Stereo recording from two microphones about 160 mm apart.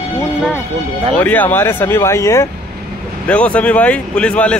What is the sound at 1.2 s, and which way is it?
Speech, 10° left (ahead or behind).